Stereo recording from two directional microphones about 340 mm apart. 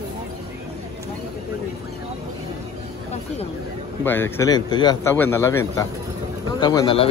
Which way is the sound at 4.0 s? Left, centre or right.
Centre.